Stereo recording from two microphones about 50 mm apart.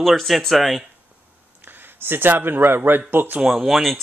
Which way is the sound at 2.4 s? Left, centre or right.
Right.